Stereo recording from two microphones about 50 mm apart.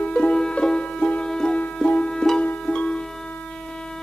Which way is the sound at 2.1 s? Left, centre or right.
Centre.